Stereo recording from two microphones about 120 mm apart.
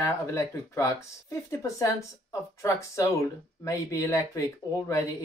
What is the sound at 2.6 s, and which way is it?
Speech, 25° left (ahead or behind).